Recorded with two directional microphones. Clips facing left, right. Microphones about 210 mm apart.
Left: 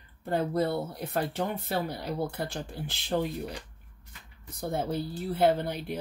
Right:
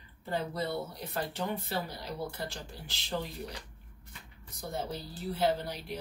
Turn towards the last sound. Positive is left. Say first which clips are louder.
# left 5 dB
turn(degrees=55)  # may be behind; listen again after turning